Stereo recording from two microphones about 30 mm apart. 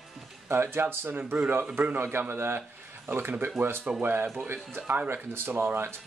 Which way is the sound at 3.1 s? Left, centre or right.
Right.